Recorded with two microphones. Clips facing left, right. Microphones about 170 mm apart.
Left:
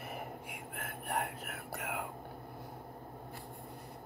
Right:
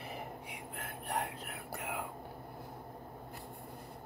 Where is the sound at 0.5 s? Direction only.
60° left (ahead or behind).